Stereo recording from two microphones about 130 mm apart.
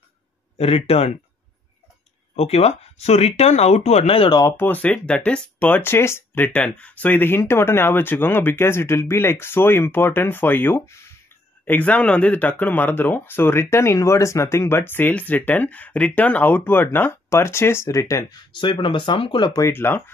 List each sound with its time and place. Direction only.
0.6 s speech: 50° left (ahead or behind)
2.3 s speech: 55° left (ahead or behind)
4.4 s speech: 20° left (ahead or behind)
18.5 s speech: 40° left (ahead or behind)
19.6 s speech: 15° left (ahead or behind)